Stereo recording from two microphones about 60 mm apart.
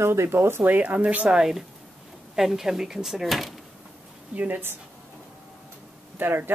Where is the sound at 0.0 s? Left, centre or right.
Right.